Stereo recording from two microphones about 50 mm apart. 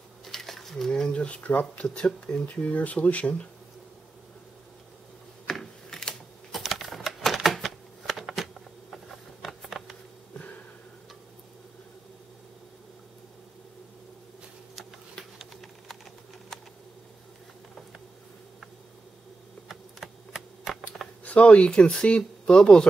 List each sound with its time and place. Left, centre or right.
0.2 s a sound: centre
1.1 s speech: left
5.5 s computer keyboard: centre
6.5 s typing: centre
15.3 s a sound: centre
19.7 s typing: centre
21.2 s speech: left